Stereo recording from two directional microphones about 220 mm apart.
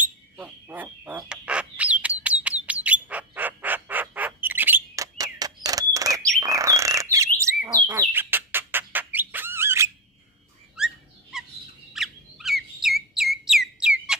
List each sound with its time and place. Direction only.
0.0 s bird: 10° right (ahead or behind)
10.8 s a sound: centre (ahead or behind)
11.9 s bird: centre (ahead or behind)